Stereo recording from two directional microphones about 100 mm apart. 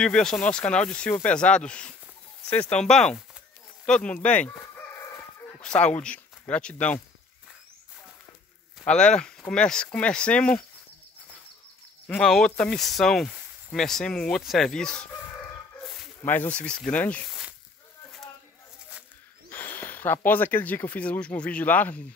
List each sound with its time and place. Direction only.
0.0 s speech: 5° left (ahead or behind)
4.5 s chicken: 30° left (ahead or behind)
5.6 s speech: 10° left (ahead or behind)
8.8 s speech: 10° left (ahead or behind)
12.1 s speech: 5° left (ahead or behind)
16.3 s speech: 15° left (ahead or behind)
19.5 s speech: 20° left (ahead or behind)